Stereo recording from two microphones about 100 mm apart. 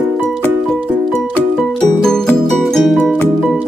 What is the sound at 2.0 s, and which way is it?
Music, 5° left (ahead or behind).